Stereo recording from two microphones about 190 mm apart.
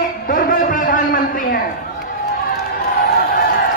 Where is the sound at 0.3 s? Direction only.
45° left (ahead or behind).